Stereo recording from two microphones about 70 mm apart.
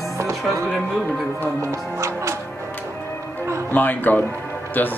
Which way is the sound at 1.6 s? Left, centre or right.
Right.